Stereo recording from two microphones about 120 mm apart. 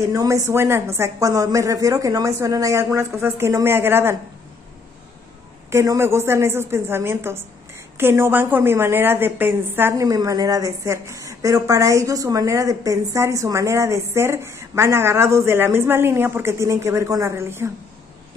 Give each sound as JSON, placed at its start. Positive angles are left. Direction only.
{"t": 0.1, "sound": "a woman's voice", "side_deg": -25}
{"t": 5.7, "sound": "a woman's voice", "side_deg": -25}